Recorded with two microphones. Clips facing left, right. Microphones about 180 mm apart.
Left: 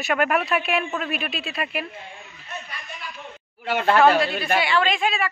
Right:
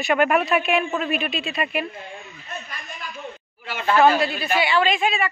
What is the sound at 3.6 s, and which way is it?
Speech, 60° left (ahead or behind).